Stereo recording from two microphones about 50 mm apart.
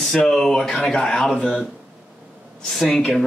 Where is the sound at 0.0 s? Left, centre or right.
Centre.